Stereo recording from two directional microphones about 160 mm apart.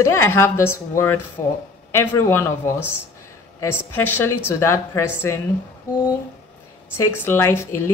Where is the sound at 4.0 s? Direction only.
15° left (ahead or behind).